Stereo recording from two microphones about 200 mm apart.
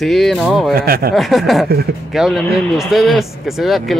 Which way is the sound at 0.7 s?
50° right (ahead or behind).